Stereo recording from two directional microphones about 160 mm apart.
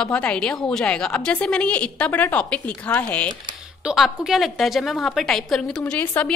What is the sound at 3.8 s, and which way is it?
A woman's voice, 5° right (ahead or behind).